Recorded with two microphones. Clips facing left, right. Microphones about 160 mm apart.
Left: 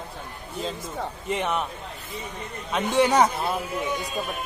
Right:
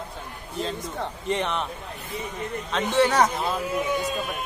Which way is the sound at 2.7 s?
10° left (ahead or behind).